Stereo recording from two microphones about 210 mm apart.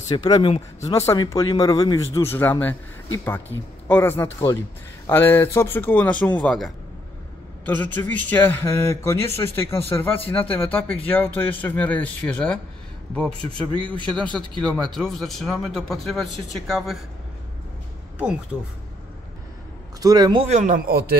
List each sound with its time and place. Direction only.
0.1 s speech: 20° left (ahead or behind)
13.4 s a man's voice: 25° right (ahead or behind)
14.6 s speech: 5° left (ahead or behind)
20.0 s a man's voice: 20° right (ahead or behind)
20.4 s a man's voice: 35° right (ahead or behind)